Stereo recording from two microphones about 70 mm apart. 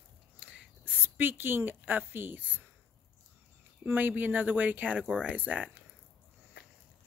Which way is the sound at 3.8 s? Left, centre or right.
Right.